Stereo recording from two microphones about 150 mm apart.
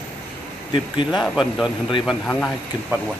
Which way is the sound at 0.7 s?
35° left (ahead or behind).